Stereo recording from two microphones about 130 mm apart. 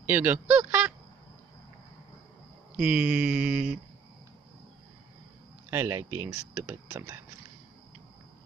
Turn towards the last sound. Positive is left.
turn(degrees=-20)  # may be behind; listen again after turning